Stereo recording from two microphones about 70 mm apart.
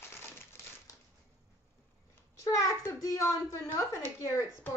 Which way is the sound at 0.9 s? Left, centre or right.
Left.